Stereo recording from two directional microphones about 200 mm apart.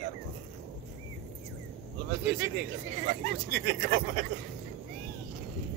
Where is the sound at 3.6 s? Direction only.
50° right (ahead or behind).